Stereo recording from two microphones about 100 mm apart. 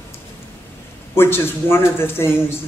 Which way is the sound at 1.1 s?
25° left (ahead or behind).